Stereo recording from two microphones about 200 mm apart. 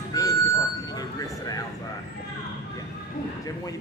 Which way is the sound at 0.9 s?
20° left (ahead or behind).